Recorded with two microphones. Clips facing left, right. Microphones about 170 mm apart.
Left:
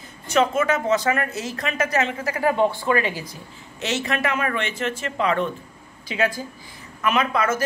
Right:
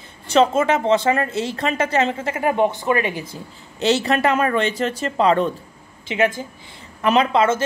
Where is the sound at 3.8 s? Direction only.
35° right (ahead or behind).